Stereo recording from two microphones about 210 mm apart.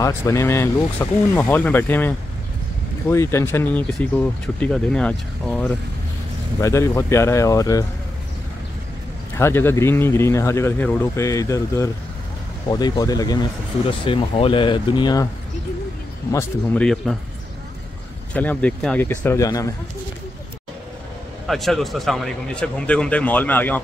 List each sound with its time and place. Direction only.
0.0 s speech: 15° left (ahead or behind)
9.4 s speech: 10° left (ahead or behind)
16.3 s speech: 10° left (ahead or behind)
18.3 s speech: 5° left (ahead or behind)
21.5 s speech: centre (ahead or behind)